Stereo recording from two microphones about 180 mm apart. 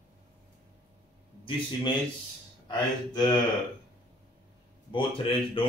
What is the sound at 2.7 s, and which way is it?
Speech, 25° left (ahead or behind).